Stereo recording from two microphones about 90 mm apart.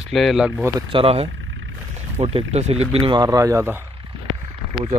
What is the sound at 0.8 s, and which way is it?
Speech, 80° right.